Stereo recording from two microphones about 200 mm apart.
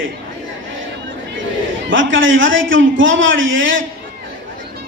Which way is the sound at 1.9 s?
70° right (ahead or behind).